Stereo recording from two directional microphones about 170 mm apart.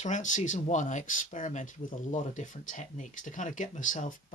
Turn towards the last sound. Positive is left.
turn(degrees=50)  # may be behind; listen again after turning